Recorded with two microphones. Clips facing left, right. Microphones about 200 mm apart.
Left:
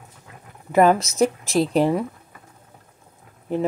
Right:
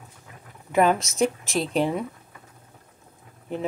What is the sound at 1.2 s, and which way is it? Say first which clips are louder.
Speech: left 4 dB; 40° left (ahead or behind).